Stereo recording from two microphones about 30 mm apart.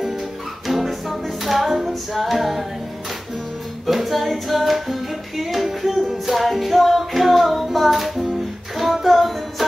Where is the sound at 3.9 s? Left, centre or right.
Centre.